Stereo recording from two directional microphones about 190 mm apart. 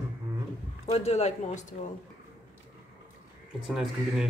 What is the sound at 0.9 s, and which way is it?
Speech, 35° left (ahead or behind).